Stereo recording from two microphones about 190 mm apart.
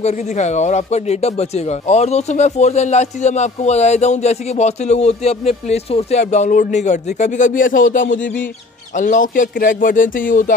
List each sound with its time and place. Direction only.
0.0 s speech: 35° left (ahead or behind)